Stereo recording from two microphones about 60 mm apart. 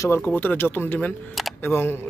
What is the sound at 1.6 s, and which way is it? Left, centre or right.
Speech, left.